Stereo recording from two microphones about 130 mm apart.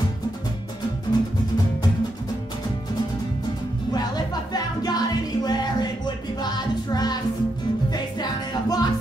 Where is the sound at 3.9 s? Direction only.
30° left (ahead or behind).